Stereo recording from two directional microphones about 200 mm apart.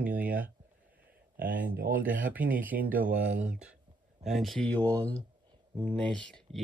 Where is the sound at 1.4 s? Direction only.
45° right (ahead or behind).